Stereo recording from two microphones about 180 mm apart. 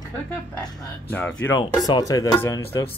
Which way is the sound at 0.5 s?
10° left (ahead or behind).